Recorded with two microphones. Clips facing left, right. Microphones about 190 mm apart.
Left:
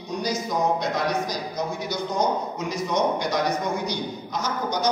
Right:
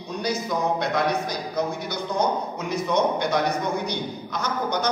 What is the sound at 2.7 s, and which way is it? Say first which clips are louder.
Speech: right 2 dB; 60° right (ahead or behind).